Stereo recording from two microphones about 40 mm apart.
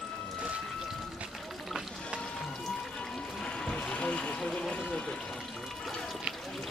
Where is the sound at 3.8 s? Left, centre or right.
Left.